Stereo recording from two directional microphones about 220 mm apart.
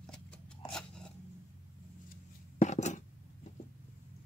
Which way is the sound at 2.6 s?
30° left (ahead or behind).